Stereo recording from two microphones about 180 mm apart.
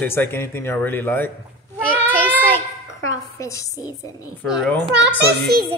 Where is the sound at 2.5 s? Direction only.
15° left (ahead or behind).